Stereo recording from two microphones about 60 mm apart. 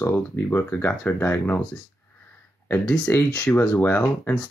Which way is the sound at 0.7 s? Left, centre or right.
Left.